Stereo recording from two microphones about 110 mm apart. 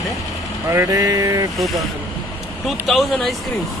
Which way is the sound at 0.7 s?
25° right (ahead or behind).